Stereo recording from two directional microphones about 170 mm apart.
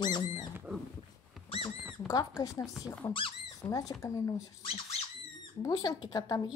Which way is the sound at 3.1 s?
30° left (ahead or behind).